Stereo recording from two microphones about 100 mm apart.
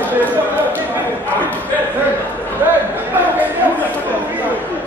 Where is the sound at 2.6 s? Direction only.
15° right (ahead or behind).